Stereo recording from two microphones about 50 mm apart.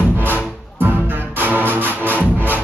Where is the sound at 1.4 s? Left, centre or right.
Right.